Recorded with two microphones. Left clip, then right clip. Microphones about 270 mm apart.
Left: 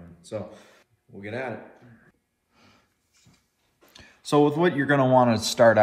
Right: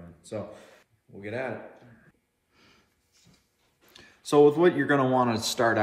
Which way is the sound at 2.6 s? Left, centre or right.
Centre.